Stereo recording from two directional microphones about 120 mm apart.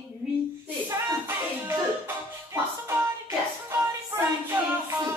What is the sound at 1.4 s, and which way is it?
Music, 20° right (ahead or behind).